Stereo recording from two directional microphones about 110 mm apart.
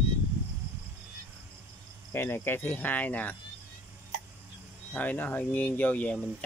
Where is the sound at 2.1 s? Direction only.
20° left (ahead or behind).